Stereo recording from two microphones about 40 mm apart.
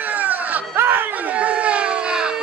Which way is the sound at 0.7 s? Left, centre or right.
Right.